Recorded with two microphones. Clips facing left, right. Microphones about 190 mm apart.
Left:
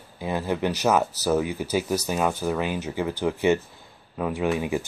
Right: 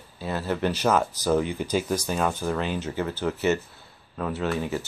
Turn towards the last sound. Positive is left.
turn(degrees=15)  # may be behind; listen again after turning